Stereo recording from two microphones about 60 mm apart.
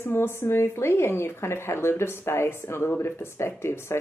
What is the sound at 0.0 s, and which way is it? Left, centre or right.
Speech, left.